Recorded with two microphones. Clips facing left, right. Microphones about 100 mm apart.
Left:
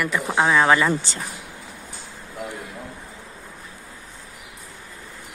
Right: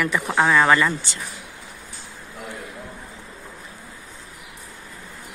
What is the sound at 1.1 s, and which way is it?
Speech, 35° left (ahead or behind).